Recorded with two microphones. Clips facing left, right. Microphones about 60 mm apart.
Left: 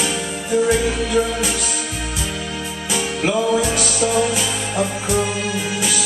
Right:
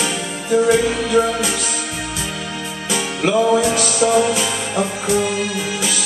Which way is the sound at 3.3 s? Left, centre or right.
Centre.